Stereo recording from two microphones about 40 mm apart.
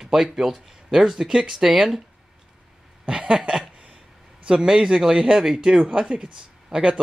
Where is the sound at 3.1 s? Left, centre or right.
Right.